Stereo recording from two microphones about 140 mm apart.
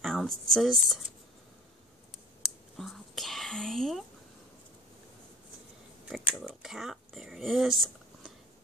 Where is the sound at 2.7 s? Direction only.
Centre (ahead or behind).